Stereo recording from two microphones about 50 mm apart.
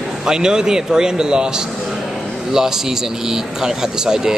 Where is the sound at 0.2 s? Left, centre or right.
Centre.